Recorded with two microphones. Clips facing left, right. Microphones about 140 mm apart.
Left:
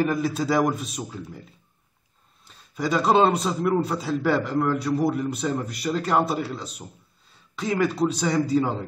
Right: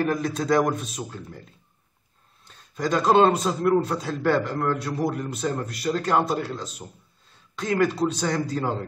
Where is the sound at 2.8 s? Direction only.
5° left (ahead or behind).